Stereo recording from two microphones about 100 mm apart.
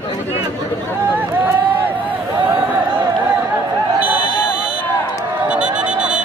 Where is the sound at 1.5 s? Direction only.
20° right (ahead or behind).